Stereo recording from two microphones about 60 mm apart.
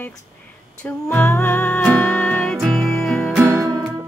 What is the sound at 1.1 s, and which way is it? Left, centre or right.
Music, left.